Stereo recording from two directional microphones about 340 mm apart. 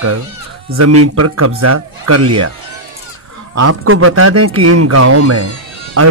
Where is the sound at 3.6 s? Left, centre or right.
Right.